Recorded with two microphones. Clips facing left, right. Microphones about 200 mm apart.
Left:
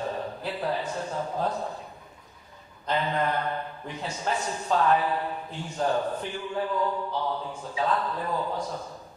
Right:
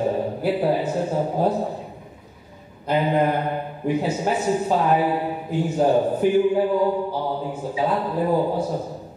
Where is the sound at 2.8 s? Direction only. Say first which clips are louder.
Right 7 dB; 10° right (ahead or behind).